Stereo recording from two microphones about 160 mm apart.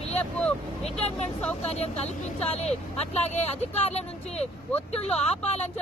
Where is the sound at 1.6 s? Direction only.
40° left (ahead or behind).